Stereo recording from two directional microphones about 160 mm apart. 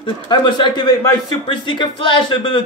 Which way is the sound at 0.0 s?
30° left (ahead or behind).